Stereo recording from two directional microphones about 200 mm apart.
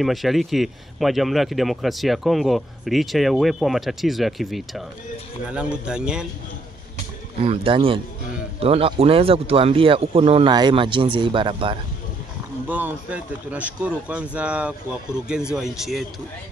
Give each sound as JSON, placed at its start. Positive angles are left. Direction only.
{"t": 0.0, "sound": "speech", "side_deg": 0}
{"t": 7.4, "sound": "speech", "side_deg": -30}
{"t": 12.6, "sound": "a man's voice", "side_deg": -10}